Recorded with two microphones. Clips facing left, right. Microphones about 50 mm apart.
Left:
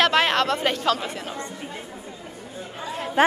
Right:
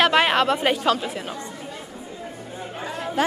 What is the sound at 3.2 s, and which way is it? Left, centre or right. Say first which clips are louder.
Speech: left 4 dB; left.